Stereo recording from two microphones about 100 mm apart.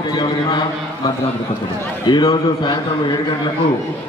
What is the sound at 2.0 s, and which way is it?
Speech, 45° left (ahead or behind).